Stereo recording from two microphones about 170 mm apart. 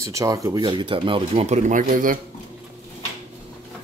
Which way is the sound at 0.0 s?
20° right (ahead or behind).